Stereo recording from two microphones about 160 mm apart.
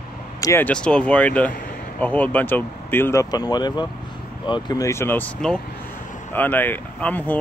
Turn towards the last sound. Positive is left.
turn(degrees=10)  # may be behind; listen again after turning